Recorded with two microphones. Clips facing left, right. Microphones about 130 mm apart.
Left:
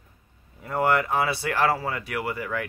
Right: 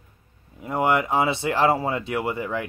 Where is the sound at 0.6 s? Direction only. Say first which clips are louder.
Right 1 dB; 15° right (ahead or behind).